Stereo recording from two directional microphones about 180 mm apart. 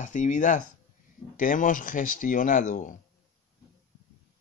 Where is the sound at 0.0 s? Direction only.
45° left (ahead or behind).